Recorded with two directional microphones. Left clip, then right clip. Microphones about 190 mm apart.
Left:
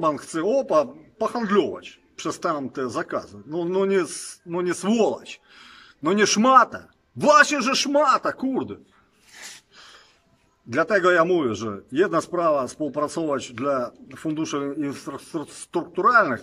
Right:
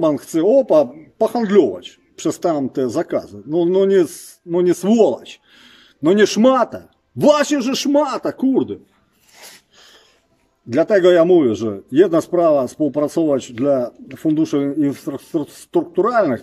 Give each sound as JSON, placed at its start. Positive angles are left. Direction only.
{"t": 0.0, "sound": "speech", "side_deg": -20}
{"t": 9.8, "sound": "wheeze", "side_deg": -15}
{"t": 10.7, "sound": "speech", "side_deg": -20}